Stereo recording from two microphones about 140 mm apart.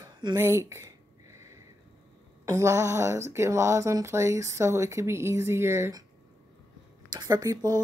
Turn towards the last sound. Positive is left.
turn(degrees=-25)  # may be behind; listen again after turning